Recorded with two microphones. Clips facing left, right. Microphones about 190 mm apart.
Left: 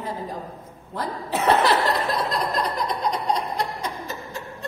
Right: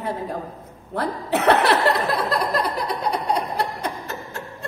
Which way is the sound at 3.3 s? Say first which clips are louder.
Right 2 dB; 65° right (ahead or behind).